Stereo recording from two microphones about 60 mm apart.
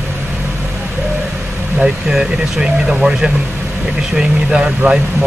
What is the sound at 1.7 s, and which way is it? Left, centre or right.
Speech, centre.